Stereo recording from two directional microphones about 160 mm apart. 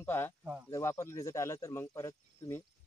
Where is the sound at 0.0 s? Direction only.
15° left (ahead or behind).